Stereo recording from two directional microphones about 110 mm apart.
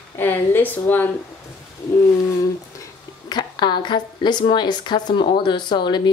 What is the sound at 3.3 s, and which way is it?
A woman's voice, 40° left (ahead or behind).